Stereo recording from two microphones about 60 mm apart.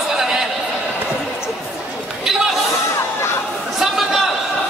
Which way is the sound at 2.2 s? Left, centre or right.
Centre.